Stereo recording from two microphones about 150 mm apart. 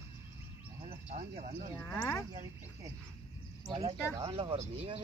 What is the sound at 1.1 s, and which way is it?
Speech, 60° right (ahead or behind).